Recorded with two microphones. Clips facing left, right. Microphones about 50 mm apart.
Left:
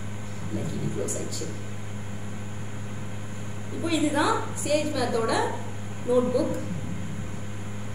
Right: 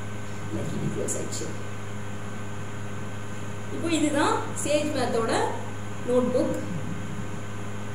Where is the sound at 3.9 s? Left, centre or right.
Centre.